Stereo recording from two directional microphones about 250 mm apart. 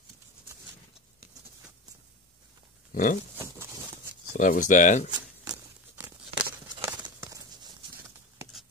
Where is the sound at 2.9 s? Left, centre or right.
Left.